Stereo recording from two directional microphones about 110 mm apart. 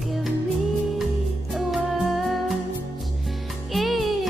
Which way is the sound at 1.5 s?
Centre (ahead or behind).